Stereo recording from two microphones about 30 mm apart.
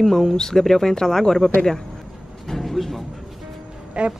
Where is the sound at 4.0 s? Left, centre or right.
Right.